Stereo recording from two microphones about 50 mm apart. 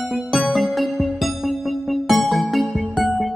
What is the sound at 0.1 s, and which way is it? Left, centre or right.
Music, centre.